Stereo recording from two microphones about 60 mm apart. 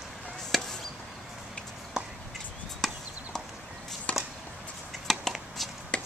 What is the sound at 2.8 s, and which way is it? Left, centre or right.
Chop, centre.